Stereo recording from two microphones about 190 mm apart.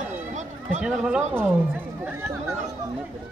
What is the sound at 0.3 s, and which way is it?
Run, 40° right (ahead or behind).